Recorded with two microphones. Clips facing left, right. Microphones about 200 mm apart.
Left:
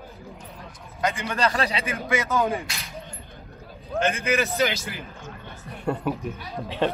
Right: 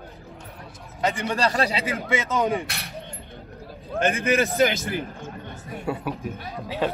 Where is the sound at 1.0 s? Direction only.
30° right (ahead or behind).